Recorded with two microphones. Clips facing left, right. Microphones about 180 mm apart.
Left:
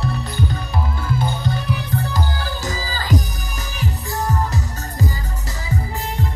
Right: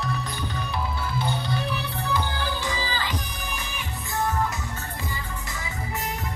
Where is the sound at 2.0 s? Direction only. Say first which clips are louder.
Left 2 dB; 40° left (ahead or behind).